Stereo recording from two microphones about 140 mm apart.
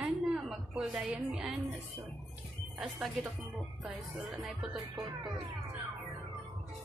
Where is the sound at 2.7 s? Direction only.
5° right (ahead or behind).